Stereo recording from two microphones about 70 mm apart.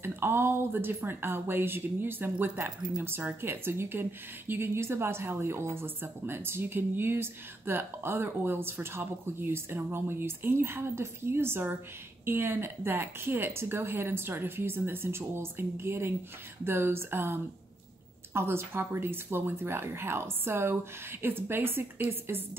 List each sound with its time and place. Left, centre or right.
0.0 s a woman's voice: right